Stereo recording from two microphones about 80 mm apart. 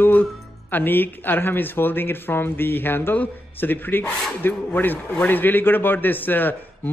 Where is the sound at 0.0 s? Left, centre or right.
Left.